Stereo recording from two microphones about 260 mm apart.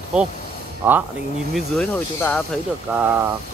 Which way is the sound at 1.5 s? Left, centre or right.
Centre.